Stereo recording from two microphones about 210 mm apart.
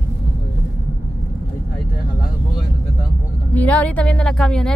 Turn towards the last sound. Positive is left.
turn(degrees=5)  # may be behind; listen again after turning